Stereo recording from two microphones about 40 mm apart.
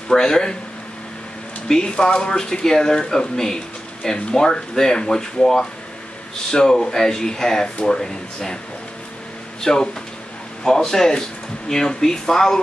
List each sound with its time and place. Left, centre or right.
0.1 s speech: centre
1.7 s speech: centre
9.6 s speech: centre